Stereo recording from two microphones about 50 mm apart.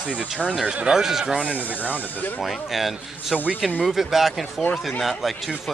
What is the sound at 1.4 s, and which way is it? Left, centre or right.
Speech, right.